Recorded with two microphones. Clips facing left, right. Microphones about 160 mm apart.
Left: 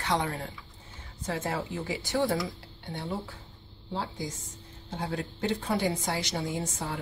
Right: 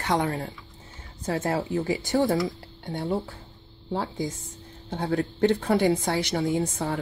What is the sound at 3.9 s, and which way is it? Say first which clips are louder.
Speech: right 6 dB; 60° right (ahead or behind).